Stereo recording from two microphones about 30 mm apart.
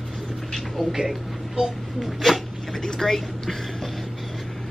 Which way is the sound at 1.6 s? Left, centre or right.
Right.